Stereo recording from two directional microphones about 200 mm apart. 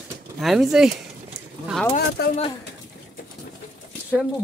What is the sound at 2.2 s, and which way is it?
Speech, 55° left (ahead or behind).